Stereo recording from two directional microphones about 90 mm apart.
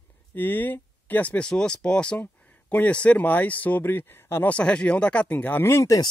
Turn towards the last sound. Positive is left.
turn(degrees=30)  # may be behind; listen again after turning